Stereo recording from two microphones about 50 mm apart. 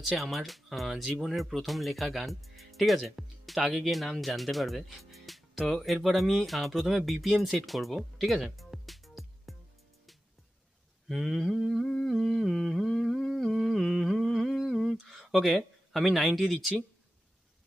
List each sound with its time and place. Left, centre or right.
0.2 s speech: centre
11.1 s speech: centre
12.1 s humming: centre
15.9 s speech: centre